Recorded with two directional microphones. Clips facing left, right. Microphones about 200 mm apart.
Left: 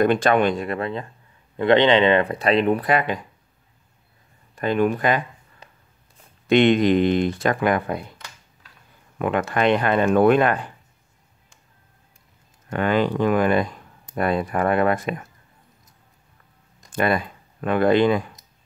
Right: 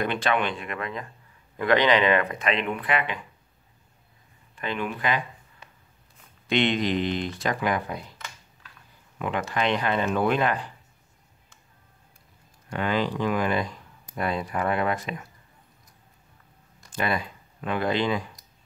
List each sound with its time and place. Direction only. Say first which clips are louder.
0.0 s speech: left 8 dB; 45° left (ahead or behind)
4.6 s speech: left 10 dB; 45° left (ahead or behind)
9.2 s speech: left 6 dB; 55° left (ahead or behind)
12.6 s speech: left 6 dB; 55° left (ahead or behind)
16.9 s speech: left 6 dB; 55° left (ahead or behind)